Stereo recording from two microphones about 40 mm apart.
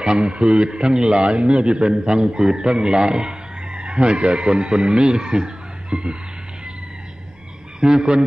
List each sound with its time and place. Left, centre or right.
0.0 s a man's voice: right
7.8 s a man's voice: right